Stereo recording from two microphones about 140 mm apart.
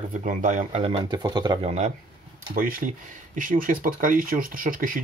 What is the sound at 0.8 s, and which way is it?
Speech, 45° right (ahead or behind).